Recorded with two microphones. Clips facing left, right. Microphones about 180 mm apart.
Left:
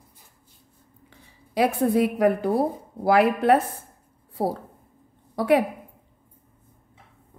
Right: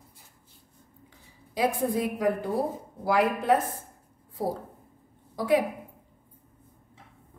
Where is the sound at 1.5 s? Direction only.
70° left (ahead or behind).